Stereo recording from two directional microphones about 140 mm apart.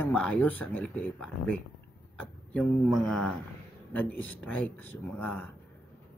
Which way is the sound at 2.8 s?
Centre (ahead or behind).